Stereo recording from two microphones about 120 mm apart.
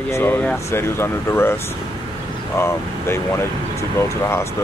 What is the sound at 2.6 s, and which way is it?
Speech, 20° left (ahead or behind).